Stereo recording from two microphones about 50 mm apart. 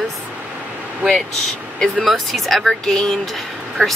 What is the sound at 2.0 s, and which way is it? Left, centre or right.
Speech, centre.